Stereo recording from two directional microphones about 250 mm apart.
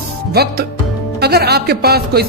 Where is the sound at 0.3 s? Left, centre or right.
Right.